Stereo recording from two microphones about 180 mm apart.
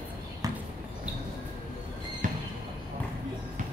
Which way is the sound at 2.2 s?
50° right (ahead or behind).